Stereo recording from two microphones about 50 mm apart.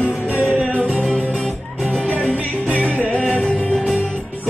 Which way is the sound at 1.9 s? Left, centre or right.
Left.